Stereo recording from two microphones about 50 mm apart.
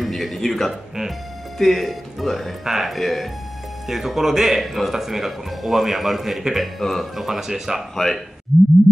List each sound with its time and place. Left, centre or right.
0.0 s speech: centre
7.2 s speech: centre
7.9 s speech: centre
8.5 s a sound: centre